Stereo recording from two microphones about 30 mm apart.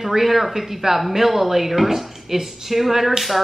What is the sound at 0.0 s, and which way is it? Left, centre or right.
Speech, centre.